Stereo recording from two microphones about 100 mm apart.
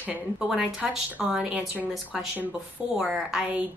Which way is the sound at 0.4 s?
5° right (ahead or behind).